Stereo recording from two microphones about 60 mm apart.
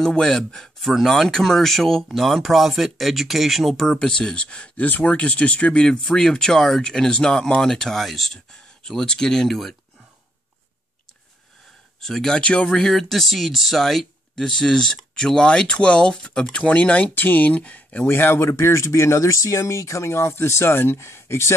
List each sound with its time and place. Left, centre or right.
0.0 s speech: centre
12.0 s speech: centre
12.4 s speech: centre
18.0 s speech: left